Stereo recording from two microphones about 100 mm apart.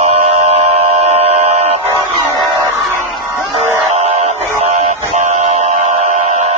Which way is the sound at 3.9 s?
90° right.